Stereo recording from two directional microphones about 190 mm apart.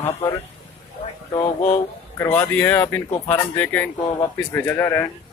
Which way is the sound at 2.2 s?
10° left (ahead or behind).